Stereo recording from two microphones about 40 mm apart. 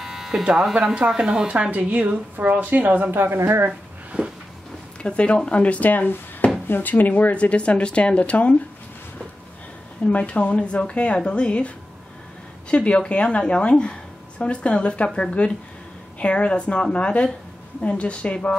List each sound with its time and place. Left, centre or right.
0.0 s electric shaver: centre
0.9 s speech: right
1.7 s a woman's voice: right
3.1 s a woman's voice: right
5.1 s speech: left
7.3 s speech: left
10.0 s speech: left